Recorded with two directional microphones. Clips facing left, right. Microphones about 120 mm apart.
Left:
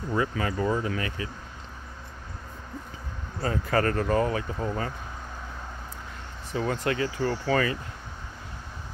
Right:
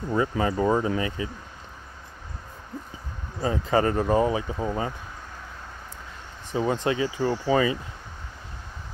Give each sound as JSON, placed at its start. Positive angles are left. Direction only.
{"t": 0.1, "sound": "speech", "side_deg": -25}
{"t": 3.3, "sound": "speech", "side_deg": -20}
{"t": 6.5, "sound": "speech", "side_deg": -20}